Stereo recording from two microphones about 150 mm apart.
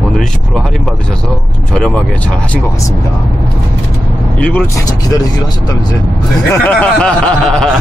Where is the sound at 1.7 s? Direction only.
5° left (ahead or behind).